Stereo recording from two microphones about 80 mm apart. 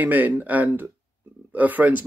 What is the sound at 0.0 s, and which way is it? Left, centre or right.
Speech, right.